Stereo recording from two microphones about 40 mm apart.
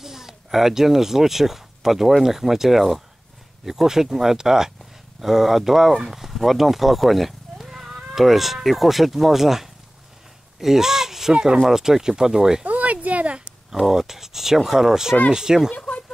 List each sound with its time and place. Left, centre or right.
0.0 s speech: centre
10.6 s a sound: centre
11.3 s speech: right
11.7 s speech: centre
12.6 s a sound: right
13.8 s speech: centre